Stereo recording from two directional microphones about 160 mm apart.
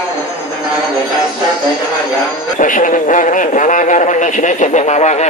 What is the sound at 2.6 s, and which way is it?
Speech, 55° left (ahead or behind).